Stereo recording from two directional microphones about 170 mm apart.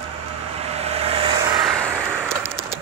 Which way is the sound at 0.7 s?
35° right (ahead or behind).